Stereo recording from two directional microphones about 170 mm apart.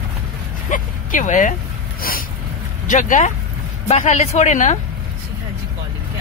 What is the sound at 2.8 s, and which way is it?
A woman's voice, 50° left (ahead or behind).